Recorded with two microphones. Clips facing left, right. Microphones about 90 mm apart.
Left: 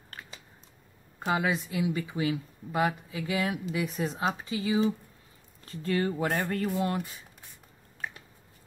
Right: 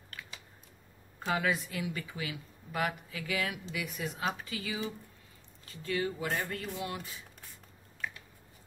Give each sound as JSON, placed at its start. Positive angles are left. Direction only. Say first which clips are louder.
{"t": 0.1, "sound": "a sound", "louder": "left 2 dB", "side_deg": 35}
{"t": 1.2, "sound": "speech", "louder": "left 3 dB", "side_deg": 20}
{"t": 5.7, "sound": "speech", "louder": "left 5 dB", "side_deg": 45}